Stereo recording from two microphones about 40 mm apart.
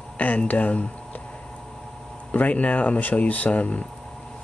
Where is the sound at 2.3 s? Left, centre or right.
Left.